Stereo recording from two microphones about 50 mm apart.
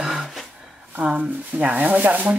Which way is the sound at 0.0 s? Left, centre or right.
Centre.